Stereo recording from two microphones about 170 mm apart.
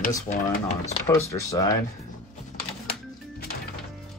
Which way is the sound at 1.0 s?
15° left (ahead or behind).